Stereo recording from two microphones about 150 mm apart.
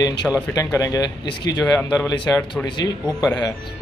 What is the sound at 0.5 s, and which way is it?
Speech, 20° left (ahead or behind).